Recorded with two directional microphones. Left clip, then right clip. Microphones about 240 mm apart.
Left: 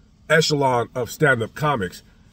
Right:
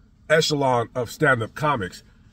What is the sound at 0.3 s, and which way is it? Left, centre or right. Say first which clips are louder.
Speech: left 1 dB; centre.